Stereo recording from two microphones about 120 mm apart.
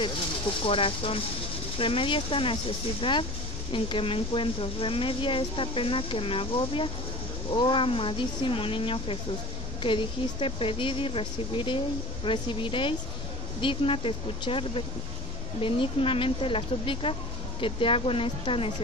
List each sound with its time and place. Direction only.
0.7 s speech: 50° left (ahead or behind)